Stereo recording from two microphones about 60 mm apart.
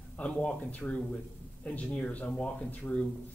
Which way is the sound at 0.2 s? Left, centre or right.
Centre.